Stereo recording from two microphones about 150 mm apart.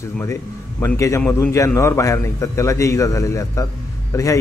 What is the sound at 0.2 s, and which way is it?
A man's voice, 15° left (ahead or behind).